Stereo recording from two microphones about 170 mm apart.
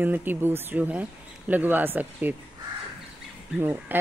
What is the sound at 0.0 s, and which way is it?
A woman's voice, 10° right (ahead or behind).